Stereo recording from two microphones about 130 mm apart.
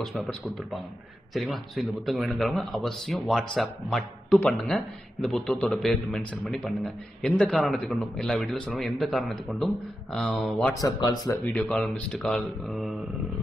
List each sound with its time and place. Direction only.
0.0 s a man's voice: centre (ahead or behind)
10.8 s speech: 35° left (ahead or behind)
11.5 s speech: 10° left (ahead or behind)